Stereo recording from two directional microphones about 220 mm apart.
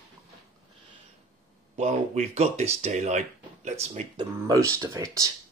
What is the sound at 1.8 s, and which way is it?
Speech, 30° right (ahead or behind).